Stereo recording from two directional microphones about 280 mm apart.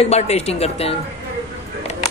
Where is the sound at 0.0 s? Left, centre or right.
Left.